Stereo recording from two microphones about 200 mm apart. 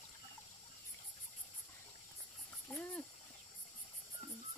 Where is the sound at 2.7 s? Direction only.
5° left (ahead or behind).